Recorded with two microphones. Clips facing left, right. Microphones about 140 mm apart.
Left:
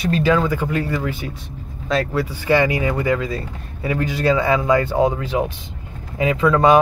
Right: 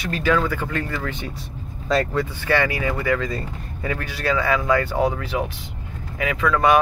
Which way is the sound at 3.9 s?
20° left (ahead or behind).